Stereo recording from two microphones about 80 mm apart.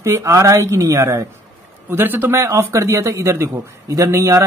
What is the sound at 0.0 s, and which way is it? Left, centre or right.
Speech, right.